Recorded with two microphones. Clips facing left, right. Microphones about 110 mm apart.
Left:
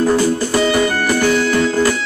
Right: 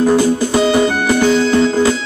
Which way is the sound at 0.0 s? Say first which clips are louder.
Right 2 dB; 15° right (ahead or behind).